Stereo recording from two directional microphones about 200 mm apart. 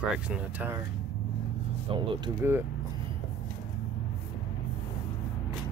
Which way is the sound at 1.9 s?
25° right (ahead or behind).